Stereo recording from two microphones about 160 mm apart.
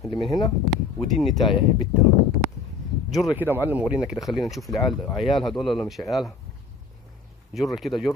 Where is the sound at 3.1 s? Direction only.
Centre (ahead or behind).